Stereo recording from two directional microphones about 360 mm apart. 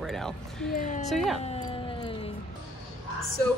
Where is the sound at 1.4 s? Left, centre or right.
Centre.